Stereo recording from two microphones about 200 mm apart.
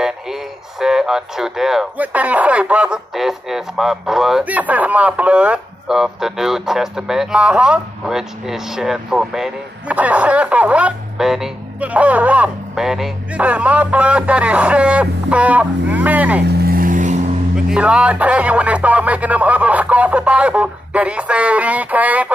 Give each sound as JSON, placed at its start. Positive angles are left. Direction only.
{"t": 0.0, "sound": "speech", "side_deg": 0}
{"t": 16.4, "sound": "vehicle", "side_deg": -50}
{"t": 17.6, "sound": "speech", "side_deg": -5}